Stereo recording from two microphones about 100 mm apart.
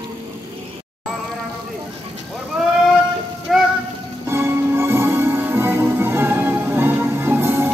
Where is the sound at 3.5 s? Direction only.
Centre (ahead or behind).